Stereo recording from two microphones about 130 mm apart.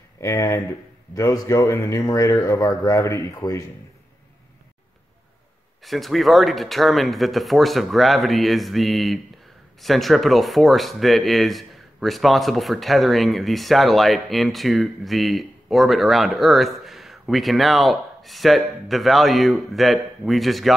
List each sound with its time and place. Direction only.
0.2 s speech: 20° left (ahead or behind)
5.8 s speech: centre (ahead or behind)